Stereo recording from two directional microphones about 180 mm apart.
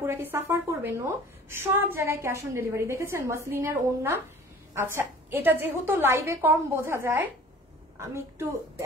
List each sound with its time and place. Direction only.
0.0 s a woman's voice: 10° right (ahead or behind)